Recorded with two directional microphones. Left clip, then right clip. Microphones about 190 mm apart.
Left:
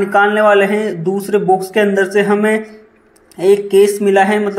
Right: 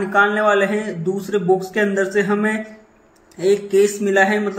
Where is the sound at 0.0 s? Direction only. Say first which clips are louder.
Left 5 dB; 25° left (ahead or behind).